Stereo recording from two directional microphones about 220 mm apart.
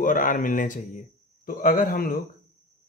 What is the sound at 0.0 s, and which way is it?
A man's voice, 35° left (ahead or behind).